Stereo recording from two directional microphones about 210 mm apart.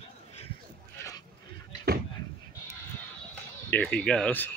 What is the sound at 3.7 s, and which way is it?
Speech, 5° left (ahead or behind).